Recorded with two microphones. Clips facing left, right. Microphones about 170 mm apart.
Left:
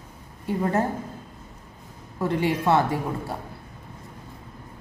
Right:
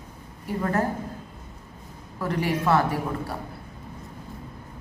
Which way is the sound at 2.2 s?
25° left (ahead or behind).